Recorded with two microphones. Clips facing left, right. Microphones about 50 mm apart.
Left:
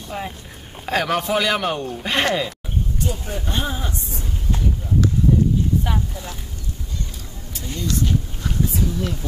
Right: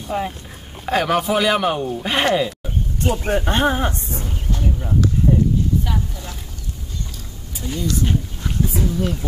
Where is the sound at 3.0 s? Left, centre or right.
Right.